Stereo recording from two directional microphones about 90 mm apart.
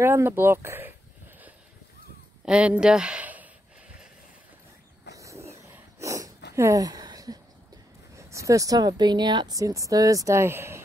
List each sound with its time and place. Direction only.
0.0 s speech: 25° right (ahead or behind)
2.4 s speech: 15° right (ahead or behind)
5.1 s wild animals: 35° right (ahead or behind)
5.7 s a sound: 35° right (ahead or behind)
8.2 s speech: 35° right (ahead or behind); by 9.6 s 55° right (ahead or behind)
9.6 s speech: 40° right (ahead or behind)